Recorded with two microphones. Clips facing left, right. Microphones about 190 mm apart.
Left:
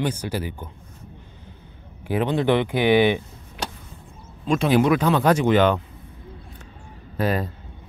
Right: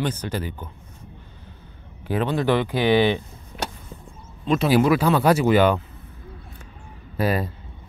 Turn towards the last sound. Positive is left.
turn(degrees=-10)  # may be behind; listen again after turning